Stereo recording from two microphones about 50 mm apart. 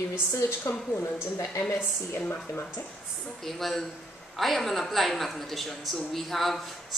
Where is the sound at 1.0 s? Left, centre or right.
Left.